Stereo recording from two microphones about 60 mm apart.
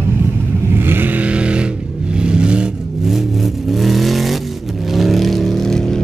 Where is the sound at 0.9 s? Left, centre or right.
Right; by 2.6 s centre.